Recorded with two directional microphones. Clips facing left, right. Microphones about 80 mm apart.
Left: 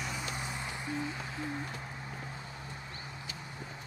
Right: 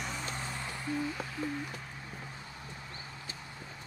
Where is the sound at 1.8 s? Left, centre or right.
Centre.